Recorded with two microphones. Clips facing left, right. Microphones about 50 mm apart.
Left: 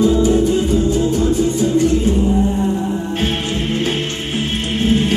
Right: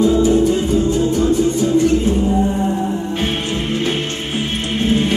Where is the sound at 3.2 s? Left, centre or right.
Right.